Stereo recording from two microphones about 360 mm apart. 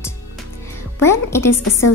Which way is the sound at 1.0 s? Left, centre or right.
Centre.